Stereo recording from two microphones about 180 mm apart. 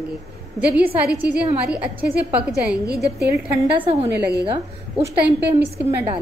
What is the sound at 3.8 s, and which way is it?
Speech, 35° right (ahead or behind).